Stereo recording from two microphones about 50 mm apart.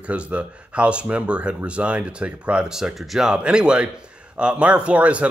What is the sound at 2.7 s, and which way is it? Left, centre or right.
Speech, centre.